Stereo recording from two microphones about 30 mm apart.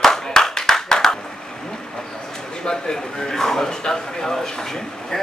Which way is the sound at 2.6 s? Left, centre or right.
Left.